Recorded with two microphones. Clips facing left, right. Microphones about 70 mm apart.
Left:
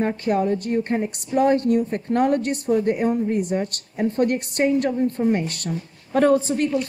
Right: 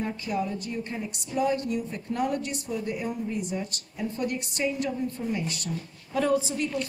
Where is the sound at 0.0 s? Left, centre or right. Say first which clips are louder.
Left 8 dB; left.